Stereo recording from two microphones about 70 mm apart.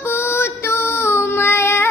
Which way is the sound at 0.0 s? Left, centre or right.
Left.